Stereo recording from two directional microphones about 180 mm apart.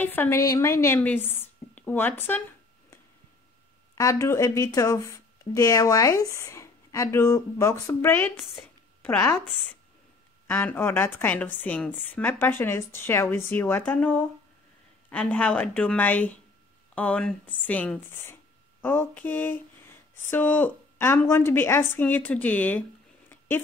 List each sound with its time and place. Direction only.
0.0 s speech: 10° left (ahead or behind)
3.9 s speech: 15° left (ahead or behind)
10.4 s a woman's voice: 10° left (ahead or behind)